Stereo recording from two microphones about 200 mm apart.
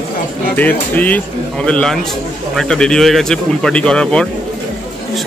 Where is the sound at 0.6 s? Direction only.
10° left (ahead or behind).